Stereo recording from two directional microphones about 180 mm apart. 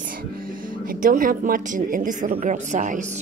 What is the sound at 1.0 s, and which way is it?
A woman's voice, 50° right (ahead or behind).